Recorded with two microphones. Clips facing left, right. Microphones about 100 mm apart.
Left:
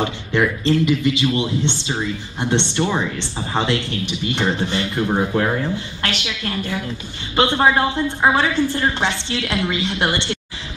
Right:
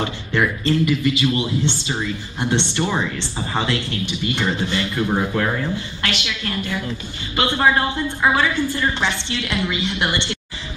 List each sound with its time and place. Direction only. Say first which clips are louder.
0.0 s speech: left 2 dB; 20° left (ahead or behind)
2.9 s speech: left 1 dB; 5° left (ahead or behind)
4.4 s speech: left 2 dB; 25° left (ahead or behind)
7.3 s a woman's voice: left 2 dB; 25° left (ahead or behind)